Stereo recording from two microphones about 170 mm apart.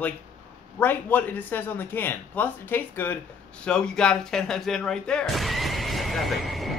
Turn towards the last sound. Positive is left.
turn(degrees=0)  # may be behind; listen again after turning